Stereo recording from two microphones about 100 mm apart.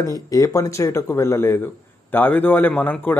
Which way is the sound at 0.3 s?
35° left (ahead or behind).